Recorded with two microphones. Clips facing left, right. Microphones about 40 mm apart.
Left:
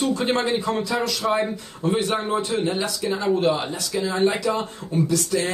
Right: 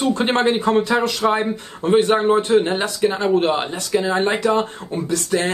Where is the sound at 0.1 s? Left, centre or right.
Right.